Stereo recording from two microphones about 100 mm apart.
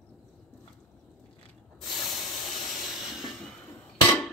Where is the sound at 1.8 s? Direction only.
Centre (ahead or behind).